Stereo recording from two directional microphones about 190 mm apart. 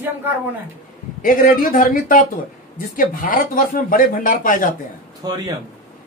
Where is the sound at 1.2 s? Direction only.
45° left (ahead or behind).